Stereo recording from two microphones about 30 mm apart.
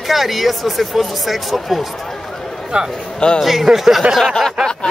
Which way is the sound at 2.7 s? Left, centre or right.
Right.